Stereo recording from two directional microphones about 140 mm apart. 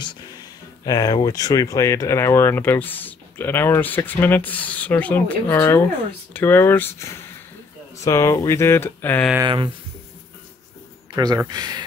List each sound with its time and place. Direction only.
0.8 s speech: 25° left (ahead or behind)
11.1 s speech: 25° right (ahead or behind)